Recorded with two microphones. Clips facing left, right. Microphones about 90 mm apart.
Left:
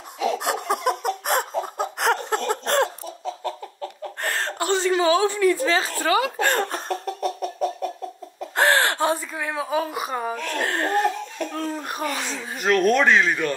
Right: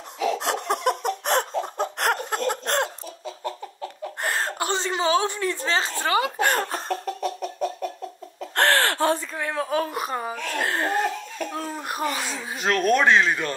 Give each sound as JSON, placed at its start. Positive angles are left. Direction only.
{"t": 0.2, "sound": "a sound", "side_deg": 10}
{"t": 4.2, "sound": "chuckle", "side_deg": -15}
{"t": 5.9, "sound": "speech", "side_deg": -25}
{"t": 6.3, "sound": "chicken", "side_deg": -5}
{"t": 8.4, "sound": "gasp", "side_deg": 10}
{"t": 9.3, "sound": "speech", "side_deg": 5}